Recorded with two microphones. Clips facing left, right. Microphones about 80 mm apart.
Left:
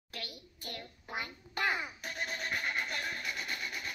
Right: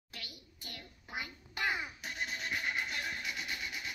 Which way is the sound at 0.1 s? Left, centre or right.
Left.